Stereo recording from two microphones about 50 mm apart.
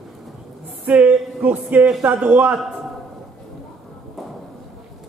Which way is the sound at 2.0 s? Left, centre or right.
Right.